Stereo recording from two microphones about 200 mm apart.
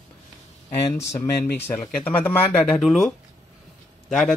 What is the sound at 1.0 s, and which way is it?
A man's voice, 15° left (ahead or behind).